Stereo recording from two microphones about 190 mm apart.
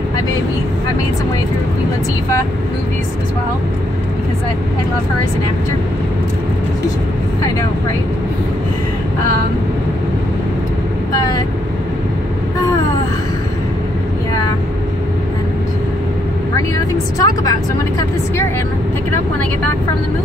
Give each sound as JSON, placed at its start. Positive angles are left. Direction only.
{"t": 11.1, "sound": "vehicle", "side_deg": 20}
{"t": 16.5, "sound": "speech", "side_deg": 20}